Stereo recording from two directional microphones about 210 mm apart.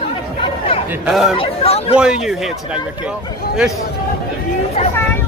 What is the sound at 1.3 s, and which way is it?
Speech, 30° left (ahead or behind).